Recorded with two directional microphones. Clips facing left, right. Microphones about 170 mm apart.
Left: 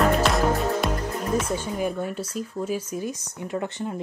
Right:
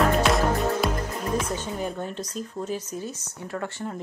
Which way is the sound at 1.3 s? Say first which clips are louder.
Left 3 dB; 5° left (ahead or behind).